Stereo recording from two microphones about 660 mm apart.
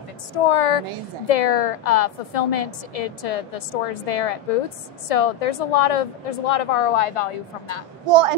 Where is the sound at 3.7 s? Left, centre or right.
Left.